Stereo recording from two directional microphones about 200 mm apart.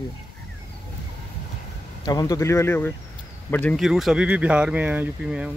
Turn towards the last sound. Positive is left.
turn(degrees=-5)  # may be behind; listen again after turning